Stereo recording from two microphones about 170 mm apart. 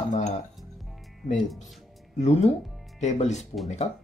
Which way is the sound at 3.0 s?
40° left (ahead or behind).